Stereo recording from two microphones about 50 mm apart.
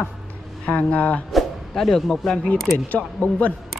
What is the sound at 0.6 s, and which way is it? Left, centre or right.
Speech, left.